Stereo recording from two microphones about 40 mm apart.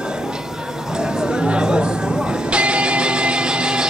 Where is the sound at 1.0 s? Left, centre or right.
Centre.